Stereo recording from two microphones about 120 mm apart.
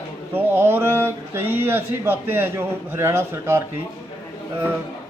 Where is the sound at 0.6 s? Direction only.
20° right (ahead or behind).